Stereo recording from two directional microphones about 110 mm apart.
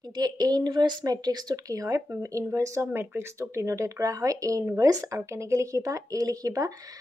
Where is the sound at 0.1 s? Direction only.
40° right (ahead or behind).